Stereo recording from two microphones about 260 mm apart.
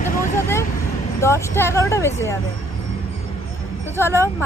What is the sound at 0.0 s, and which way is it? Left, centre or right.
Vehicle, left.